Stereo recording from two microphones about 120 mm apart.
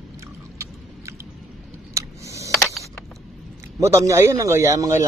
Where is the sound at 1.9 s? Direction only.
25° right (ahead or behind).